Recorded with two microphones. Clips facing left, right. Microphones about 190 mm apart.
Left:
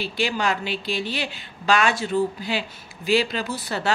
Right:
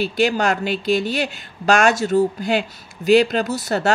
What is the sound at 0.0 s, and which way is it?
Speech, 45° right (ahead or behind).